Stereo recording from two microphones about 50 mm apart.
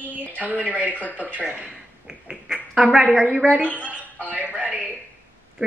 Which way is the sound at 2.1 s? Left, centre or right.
Centre.